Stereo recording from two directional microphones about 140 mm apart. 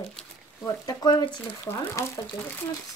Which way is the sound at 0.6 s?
30° left (ahead or behind).